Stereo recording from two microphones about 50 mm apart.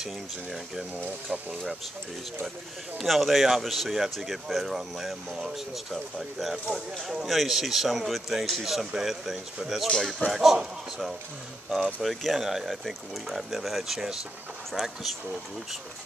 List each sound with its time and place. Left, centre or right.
0.0 s speech: centre
3.0 s speech: centre
11.7 s speech: centre